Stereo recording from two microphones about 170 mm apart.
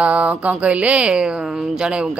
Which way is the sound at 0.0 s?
10° right (ahead or behind).